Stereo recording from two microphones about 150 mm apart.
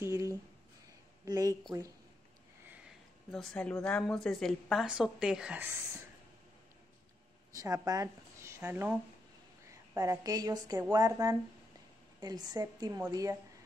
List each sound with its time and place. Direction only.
0.0 s a sound: 20° right (ahead or behind)
1.2 s a woman's voice: 25° right (ahead or behind)
3.3 s a woman's voice: 5° left (ahead or behind)
7.5 s a woman's voice: 25° right (ahead or behind)